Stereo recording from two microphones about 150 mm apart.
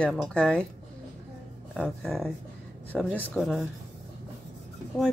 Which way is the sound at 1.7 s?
Centre (ahead or behind).